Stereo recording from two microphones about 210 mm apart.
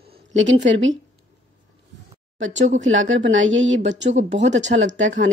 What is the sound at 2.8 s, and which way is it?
Speech, 65° right (ahead or behind).